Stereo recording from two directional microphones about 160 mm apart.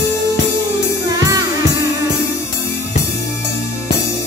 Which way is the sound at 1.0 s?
20° right (ahead or behind).